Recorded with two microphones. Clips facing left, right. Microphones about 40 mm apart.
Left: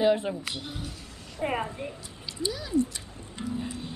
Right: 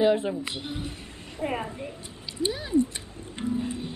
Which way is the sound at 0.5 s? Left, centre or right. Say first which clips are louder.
Right 2 dB; right.